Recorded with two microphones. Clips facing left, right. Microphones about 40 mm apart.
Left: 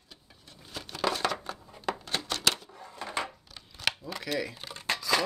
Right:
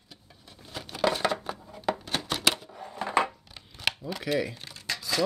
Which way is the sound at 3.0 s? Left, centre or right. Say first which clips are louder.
Right 8 dB; right.